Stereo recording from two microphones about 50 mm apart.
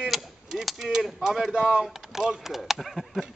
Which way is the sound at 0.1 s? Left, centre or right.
Centre.